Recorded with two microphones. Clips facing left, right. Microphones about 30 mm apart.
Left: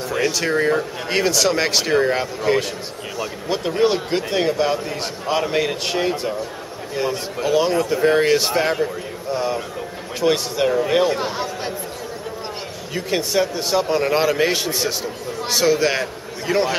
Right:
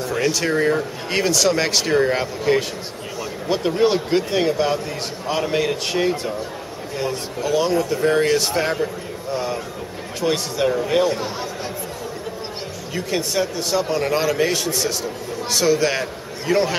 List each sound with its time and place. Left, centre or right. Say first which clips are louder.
0.0 s speech: even; centre
11.1 s a man's voice: left 2 dB; left
12.9 s speech: left 2 dB; centre